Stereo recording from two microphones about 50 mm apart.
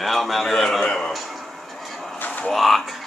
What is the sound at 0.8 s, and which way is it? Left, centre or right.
Speech, left.